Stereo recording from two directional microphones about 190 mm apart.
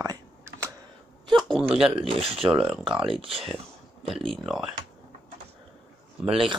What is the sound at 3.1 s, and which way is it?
Speech, 30° right (ahead or behind).